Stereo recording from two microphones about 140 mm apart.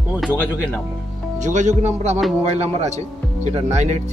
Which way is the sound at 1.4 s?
60° right (ahead or behind).